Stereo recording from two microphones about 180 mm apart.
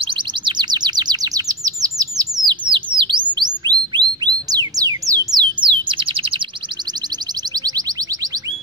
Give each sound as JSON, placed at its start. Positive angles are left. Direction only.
{"t": 0.0, "sound": "chirp", "side_deg": -25}
{"t": 2.4, "sound": "bird", "side_deg": -25}
{"t": 7.5, "sound": "music", "side_deg": -20}